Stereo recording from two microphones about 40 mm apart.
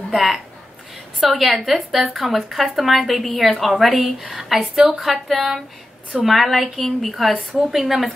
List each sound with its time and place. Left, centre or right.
0.1 s a woman's voice: centre
4.2 s speech: centre
4.5 s a woman's voice: centre